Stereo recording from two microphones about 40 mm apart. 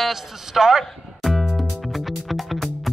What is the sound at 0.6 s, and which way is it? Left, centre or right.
Speech, centre.